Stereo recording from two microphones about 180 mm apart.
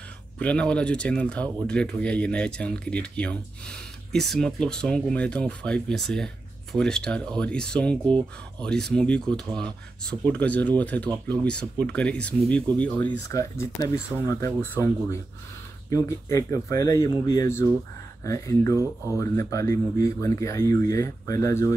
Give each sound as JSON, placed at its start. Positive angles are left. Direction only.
{"t": 0.4, "sound": "speech", "side_deg": 5}